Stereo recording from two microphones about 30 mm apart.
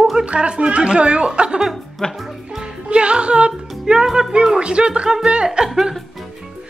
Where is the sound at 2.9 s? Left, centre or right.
Right.